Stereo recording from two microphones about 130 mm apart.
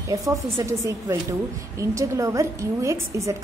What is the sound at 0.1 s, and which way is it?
A woman's voice, 25° right (ahead or behind).